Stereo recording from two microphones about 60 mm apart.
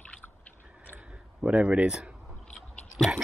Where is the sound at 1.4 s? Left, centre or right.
Centre.